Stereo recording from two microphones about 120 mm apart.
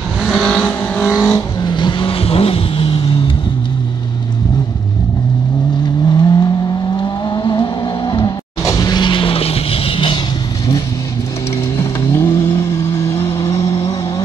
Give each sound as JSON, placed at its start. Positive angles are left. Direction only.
{"t": 0.3, "sound": "vehicle", "side_deg": 5}
{"t": 1.3, "sound": "vehicle", "side_deg": 35}
{"t": 6.0, "sound": "vehicle", "side_deg": 35}
{"t": 8.6, "sound": "music", "side_deg": 30}
{"t": 11.7, "sound": "vehicle", "side_deg": 20}